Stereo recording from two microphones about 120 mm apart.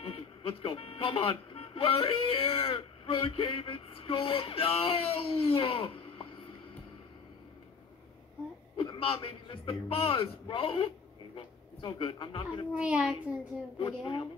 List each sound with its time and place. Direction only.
0.0 s speech: 50° left (ahead or behind)
8.7 s speech: 45° left (ahead or behind)
12.7 s a child's voice: 10° right (ahead or behind)
13.7 s speech: 45° left (ahead or behind)